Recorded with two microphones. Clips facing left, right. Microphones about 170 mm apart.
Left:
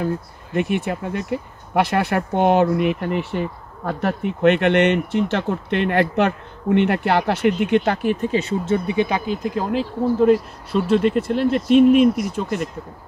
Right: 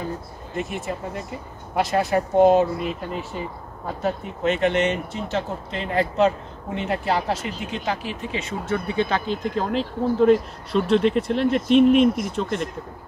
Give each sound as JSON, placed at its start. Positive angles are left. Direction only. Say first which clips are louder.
{"t": 0.6, "sound": "speech", "louder": "left 7 dB", "side_deg": 65}